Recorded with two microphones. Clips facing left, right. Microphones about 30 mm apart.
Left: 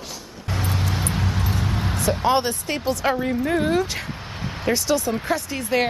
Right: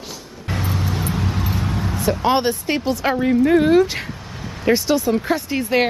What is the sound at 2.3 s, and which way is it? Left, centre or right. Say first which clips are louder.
Speech: right 3 dB; centre.